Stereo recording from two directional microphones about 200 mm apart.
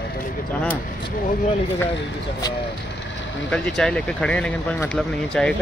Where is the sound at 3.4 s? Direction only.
5° left (ahead or behind).